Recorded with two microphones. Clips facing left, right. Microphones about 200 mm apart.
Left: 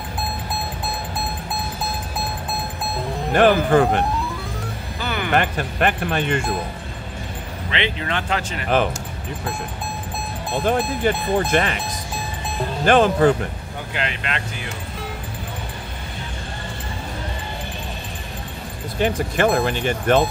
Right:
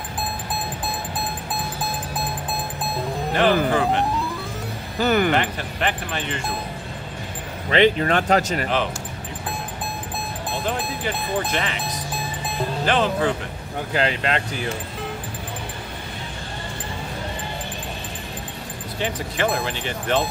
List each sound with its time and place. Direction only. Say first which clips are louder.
3.3 s speech: left 4 dB; 50° left (ahead or behind)
5.0 s speech: right 8 dB; 45° right (ahead or behind)
5.3 s speech: left 2 dB; 50° left (ahead or behind)
7.7 s speech: right 8 dB; 40° right (ahead or behind)
10.6 s speech: left 8 dB; 45° left (ahead or behind)
12.8 s speech: left 7 dB; 45° left (ahead or behind)
13.9 s speech: right 5 dB; 35° right (ahead or behind)
18.9 s speech: left 6 dB; 50° left (ahead or behind)